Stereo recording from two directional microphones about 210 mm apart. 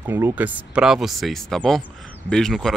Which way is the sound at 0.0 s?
10° right (ahead or behind).